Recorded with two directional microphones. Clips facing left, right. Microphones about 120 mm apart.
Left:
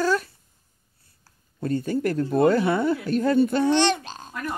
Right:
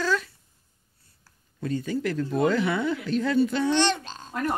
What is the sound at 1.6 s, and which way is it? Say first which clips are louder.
Speech: left 3 dB; 50° left (ahead or behind).